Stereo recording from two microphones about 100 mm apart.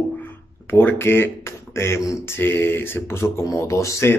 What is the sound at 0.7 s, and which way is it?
Speech, 20° left (ahead or behind).